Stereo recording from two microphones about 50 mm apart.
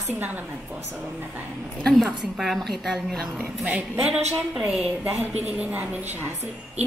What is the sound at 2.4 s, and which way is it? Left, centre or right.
Speech, centre.